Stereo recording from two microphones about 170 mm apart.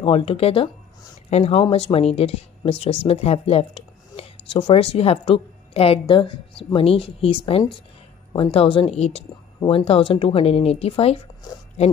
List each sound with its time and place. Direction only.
0.0 s speech: 35° left (ahead or behind)